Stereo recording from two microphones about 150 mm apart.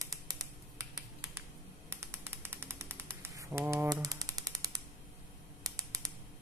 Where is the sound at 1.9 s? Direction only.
15° right (ahead or behind).